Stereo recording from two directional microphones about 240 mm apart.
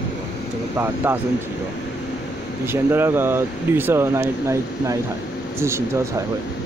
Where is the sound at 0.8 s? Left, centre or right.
Centre.